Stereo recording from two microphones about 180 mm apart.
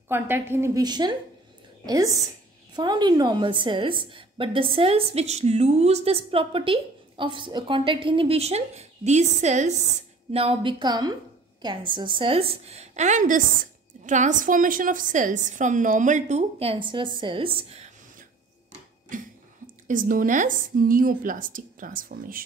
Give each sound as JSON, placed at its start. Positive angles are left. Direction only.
{"t": 0.1, "sound": "a woman's voice", "side_deg": -15}
{"t": 19.0, "sound": "speech", "side_deg": -45}